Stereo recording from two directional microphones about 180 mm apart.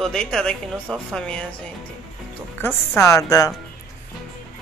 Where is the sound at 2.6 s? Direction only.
15° left (ahead or behind).